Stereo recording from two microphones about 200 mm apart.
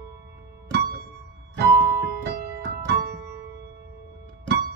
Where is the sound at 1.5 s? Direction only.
55° right (ahead or behind).